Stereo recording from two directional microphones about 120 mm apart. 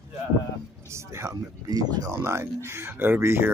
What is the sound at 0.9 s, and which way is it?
Speech, 25° right (ahead or behind).